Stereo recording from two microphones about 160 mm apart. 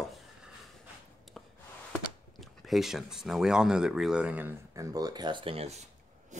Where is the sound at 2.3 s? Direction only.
Centre (ahead or behind).